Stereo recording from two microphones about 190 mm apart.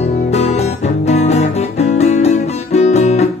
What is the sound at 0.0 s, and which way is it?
Music, 35° left (ahead or behind).